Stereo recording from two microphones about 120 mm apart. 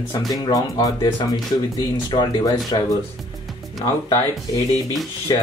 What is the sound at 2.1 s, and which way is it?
Speech, 40° left (ahead or behind).